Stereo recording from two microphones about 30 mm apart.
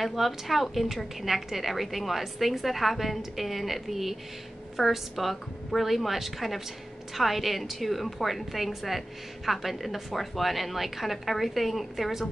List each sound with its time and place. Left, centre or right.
0.0 s a woman's voice: centre